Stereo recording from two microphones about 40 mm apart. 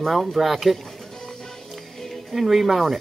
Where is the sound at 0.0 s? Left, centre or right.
Centre.